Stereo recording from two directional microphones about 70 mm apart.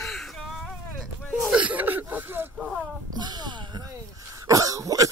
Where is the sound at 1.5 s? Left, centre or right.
Right.